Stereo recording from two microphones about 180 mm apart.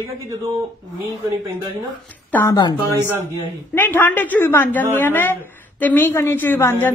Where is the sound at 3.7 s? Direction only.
10° left (ahead or behind).